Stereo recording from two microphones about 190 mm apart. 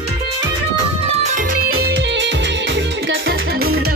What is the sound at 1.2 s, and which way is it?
Music, 45° right (ahead or behind).